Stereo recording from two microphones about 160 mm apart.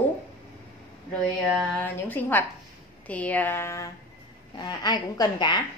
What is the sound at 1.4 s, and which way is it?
Speech, 5° right (ahead or behind).